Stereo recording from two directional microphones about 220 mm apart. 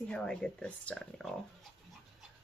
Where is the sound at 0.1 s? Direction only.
5° left (ahead or behind).